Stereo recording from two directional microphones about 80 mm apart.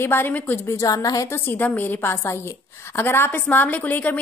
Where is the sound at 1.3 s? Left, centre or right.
Left.